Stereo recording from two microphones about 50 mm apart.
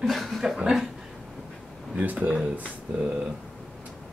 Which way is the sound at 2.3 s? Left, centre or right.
Right.